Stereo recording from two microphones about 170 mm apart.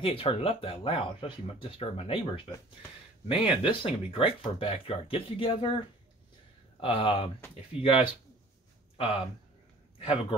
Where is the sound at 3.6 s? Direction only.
30° left (ahead or behind).